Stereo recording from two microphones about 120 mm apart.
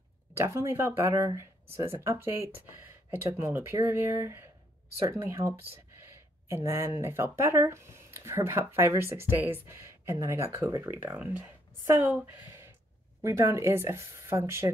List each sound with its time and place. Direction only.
0.3 s speech: 25° right (ahead or behind)